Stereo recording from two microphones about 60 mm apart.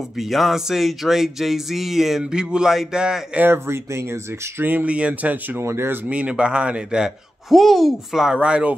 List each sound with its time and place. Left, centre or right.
0.2 s speech: centre
3.4 s speech: right
4.6 s speech: right
5.6 s speech: right
6.0 s speech: right
7.4 s speech: centre
8.4 s speech: centre